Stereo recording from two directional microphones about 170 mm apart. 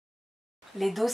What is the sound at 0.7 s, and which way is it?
Speech, centre (ahead or behind).